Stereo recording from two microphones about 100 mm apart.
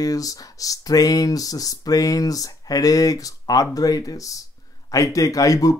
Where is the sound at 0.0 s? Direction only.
35° left (ahead or behind).